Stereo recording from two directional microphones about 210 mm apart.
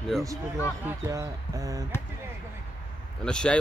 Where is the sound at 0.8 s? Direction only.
15° right (ahead or behind).